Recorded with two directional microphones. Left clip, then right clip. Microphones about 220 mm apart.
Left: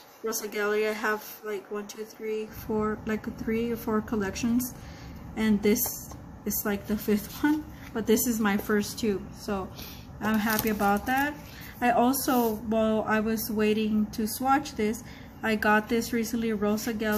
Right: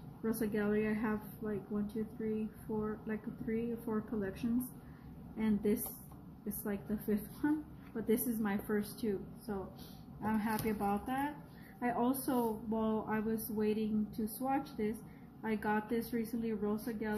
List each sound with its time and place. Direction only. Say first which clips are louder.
0.3 s speech: left 7 dB; 25° left (ahead or behind)
3.1 s speech: left 9 dB; 20° left (ahead or behind)